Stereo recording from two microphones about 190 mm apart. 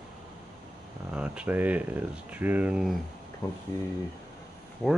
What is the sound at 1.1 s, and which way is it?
Speech, 5° right (ahead or behind).